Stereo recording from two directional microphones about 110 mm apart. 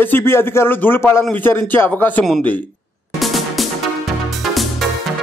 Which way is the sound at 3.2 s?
Centre (ahead or behind).